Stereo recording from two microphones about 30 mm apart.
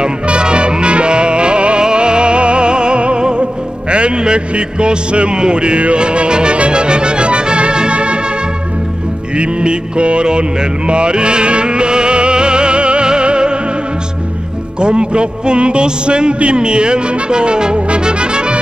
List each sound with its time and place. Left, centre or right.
0.0 s music: right
9.4 s music: right
14.8 s a man's voice: right
17.8 s trumpet: right